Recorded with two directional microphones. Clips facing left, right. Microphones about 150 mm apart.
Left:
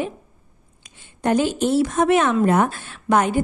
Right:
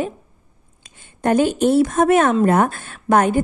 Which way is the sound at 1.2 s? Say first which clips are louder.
Right 3 dB; 50° right (ahead or behind).